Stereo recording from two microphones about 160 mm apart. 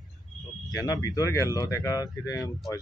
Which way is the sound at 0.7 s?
20° left (ahead or behind).